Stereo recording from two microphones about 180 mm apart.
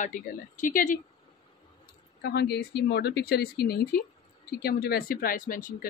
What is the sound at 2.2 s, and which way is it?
Speech, 65° left (ahead or behind).